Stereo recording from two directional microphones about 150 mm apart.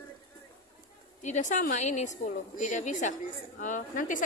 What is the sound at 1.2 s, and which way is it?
A woman's voice, 55° left (ahead or behind).